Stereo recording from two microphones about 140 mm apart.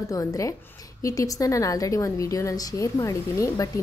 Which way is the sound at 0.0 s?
25° left (ahead or behind).